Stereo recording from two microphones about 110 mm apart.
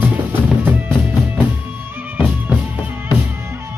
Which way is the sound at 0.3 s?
20° right (ahead or behind).